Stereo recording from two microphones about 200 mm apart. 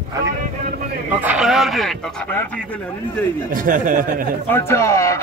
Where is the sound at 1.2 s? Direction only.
5° right (ahead or behind).